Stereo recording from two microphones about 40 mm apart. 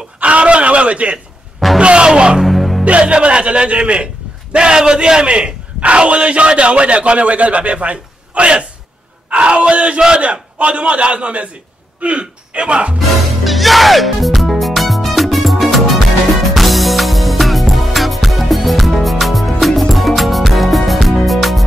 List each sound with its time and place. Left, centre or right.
0.2 s a sound: right
1.8 s music: right
2.4 s music: centre
2.8 s a man's voice: right
13.4 s music: centre